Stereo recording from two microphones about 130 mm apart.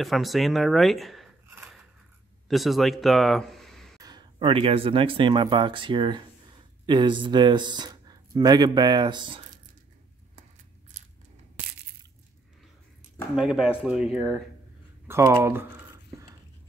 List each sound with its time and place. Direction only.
0.0 s speech: centre (ahead or behind)
2.4 s speech: centre (ahead or behind)
4.0 s speech: 35° right (ahead or behind)
13.4 s speech: 5° right (ahead or behind)
15.0 s speech: 20° right (ahead or behind)